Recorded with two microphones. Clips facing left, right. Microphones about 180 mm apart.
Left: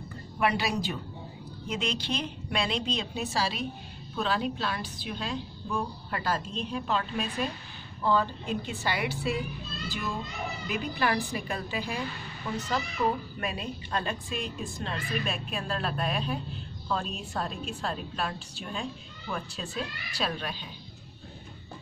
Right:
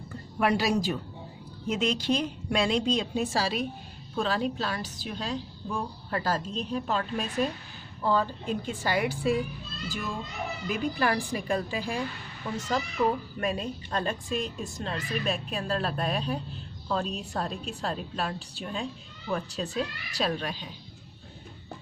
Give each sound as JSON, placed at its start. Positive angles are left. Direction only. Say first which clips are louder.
{"t": 0.4, "sound": "a woman's voice", "louder": "right 3 dB", "side_deg": -40}
{"t": 10.7, "sound": "a woman's voice", "louder": "right 2 dB", "side_deg": -40}